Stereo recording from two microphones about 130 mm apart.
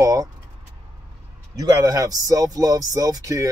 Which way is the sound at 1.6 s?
25° right (ahead or behind).